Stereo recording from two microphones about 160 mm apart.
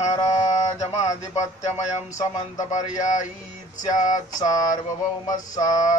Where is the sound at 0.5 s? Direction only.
45° left (ahead or behind).